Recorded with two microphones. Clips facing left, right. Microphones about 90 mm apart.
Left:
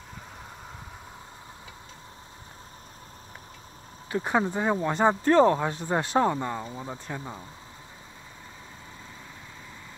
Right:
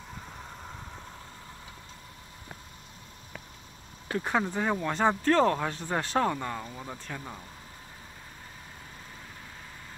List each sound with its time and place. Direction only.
4.1 s speech: 15° left (ahead or behind)